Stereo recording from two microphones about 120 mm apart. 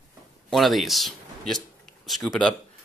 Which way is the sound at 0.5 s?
Centre (ahead or behind).